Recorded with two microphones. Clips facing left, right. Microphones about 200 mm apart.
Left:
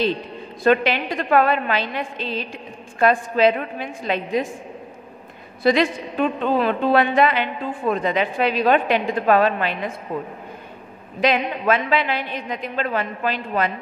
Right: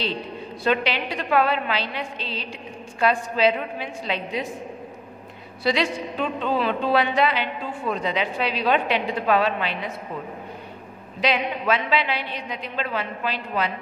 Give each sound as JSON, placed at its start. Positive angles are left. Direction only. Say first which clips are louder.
{"t": 0.7, "sound": "a woman's voice", "louder": "left 5 dB", "side_deg": 50}
{"t": 5.6, "sound": "a woman's voice", "louder": "left 5 dB", "side_deg": 50}
{"t": 11.1, "sound": "a woman's voice", "louder": "left 3 dB", "side_deg": 50}